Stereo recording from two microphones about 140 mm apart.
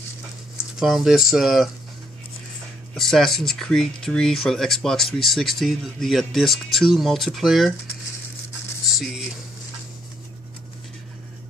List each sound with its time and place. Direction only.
0.7 s speech: centre (ahead or behind)
2.9 s speech: centre (ahead or behind)
8.9 s speech: 5° right (ahead or behind)